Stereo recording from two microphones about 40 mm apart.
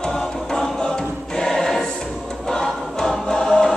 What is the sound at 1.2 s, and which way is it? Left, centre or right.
Choir, centre.